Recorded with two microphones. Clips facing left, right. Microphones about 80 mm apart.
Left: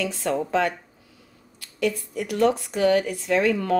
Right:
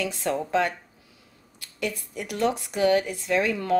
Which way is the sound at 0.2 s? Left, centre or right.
Centre.